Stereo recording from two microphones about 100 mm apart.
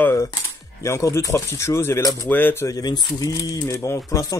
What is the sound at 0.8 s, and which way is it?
Speech, 30° left (ahead or behind).